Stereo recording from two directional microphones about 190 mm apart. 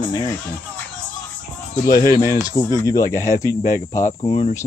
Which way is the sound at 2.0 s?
20° left (ahead or behind).